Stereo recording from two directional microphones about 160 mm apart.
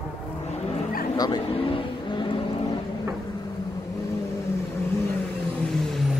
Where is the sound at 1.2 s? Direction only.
30° left (ahead or behind).